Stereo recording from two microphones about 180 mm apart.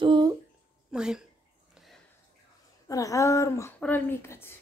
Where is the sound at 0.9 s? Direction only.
5° right (ahead or behind).